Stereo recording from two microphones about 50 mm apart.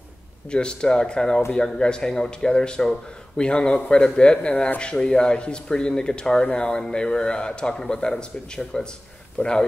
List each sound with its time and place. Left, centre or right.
0.5 s speech: centre